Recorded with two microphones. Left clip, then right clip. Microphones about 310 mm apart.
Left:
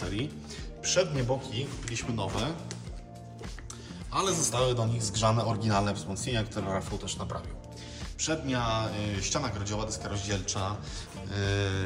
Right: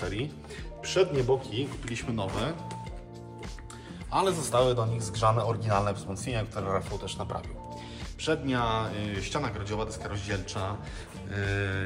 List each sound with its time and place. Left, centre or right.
0.8 s speech: centre
4.1 s a man's voice: centre
8.2 s speech: centre